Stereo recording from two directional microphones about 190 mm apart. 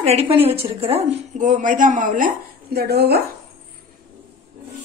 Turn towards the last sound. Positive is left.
turn(degrees=-60)  # may be behind; listen again after turning